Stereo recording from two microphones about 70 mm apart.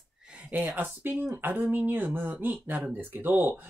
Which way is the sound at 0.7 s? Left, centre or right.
Right.